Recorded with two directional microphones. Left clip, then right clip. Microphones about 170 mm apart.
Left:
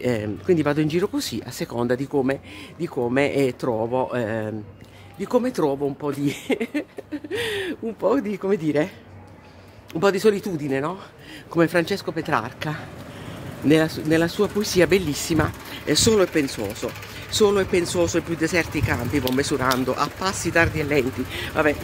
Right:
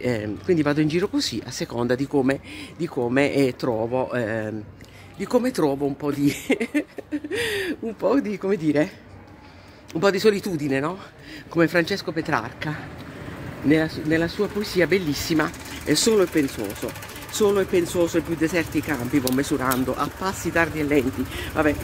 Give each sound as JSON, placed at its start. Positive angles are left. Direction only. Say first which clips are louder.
{"t": 0.0, "sound": "speech", "louder": "left 1 dB", "side_deg": 15}
{"t": 9.9, "sound": "speech", "louder": "even", "side_deg": 10}
{"t": 11.5, "sound": "speech", "louder": "even", "side_deg": 15}
{"t": 13.7, "sound": "speech", "louder": "left 2 dB", "side_deg": 35}
{"t": 15.3, "sound": "speech", "louder": "left 1 dB", "side_deg": 5}